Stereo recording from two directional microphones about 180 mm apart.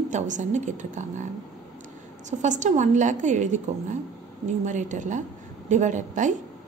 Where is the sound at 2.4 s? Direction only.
40° right (ahead or behind).